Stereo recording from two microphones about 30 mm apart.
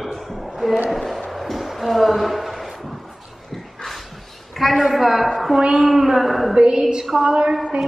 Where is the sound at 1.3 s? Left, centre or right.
Centre.